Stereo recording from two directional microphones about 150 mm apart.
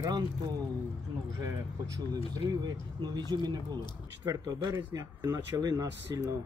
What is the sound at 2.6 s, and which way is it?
Speech, 30° right (ahead or behind).